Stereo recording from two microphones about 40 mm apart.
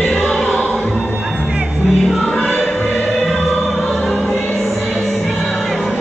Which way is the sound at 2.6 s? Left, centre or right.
Centre.